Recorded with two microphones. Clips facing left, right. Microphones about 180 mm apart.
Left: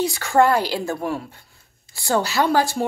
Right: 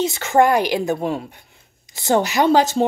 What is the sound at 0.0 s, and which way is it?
A woman's voice, 20° right (ahead or behind).